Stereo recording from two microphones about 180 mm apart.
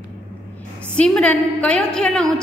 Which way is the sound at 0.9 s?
5° left (ahead or behind).